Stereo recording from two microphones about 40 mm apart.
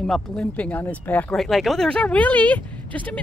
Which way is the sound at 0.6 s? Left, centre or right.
Left.